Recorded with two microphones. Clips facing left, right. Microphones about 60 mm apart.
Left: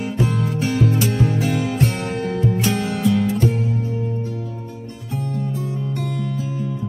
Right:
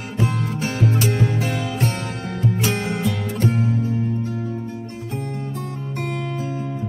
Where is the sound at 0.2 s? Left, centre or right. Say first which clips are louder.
Left 1 dB; right.